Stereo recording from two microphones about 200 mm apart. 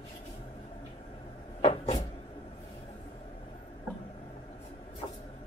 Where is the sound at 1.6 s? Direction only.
30° left (ahead or behind).